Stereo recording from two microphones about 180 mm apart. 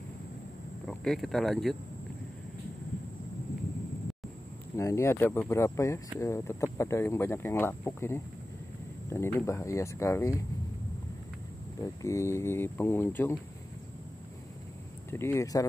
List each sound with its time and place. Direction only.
0.8 s speech: centre (ahead or behind)
4.7 s speech: 15° left (ahead or behind)
11.8 s speech: 15° left (ahead or behind)
15.0 s speech: 15° left (ahead or behind)